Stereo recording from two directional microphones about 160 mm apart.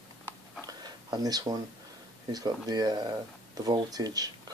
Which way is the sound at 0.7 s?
25° right (ahead or behind).